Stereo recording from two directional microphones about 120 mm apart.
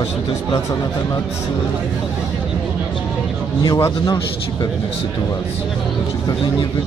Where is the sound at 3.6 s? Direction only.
30° left (ahead or behind).